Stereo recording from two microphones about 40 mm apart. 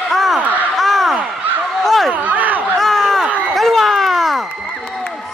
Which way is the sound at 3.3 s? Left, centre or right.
Right.